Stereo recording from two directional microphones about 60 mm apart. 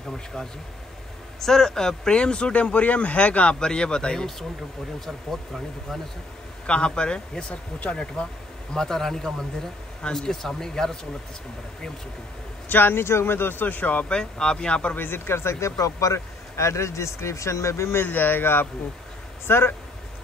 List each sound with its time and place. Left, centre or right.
1.4 s speech: centre
6.6 s speech: centre
12.6 s speech: left
14.1 s speech: centre
15.0 s speech: left
15.8 s speech: left
18.0 s speech: left